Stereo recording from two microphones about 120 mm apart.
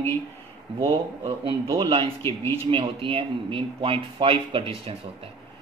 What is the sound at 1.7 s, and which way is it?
Speech, 55° right (ahead or behind).